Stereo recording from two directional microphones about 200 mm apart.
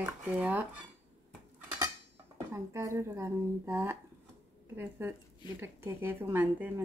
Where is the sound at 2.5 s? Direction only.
15° right (ahead or behind).